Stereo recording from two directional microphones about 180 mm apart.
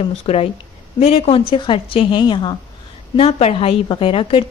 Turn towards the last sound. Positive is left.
turn(degrees=30)  # may be behind; listen again after turning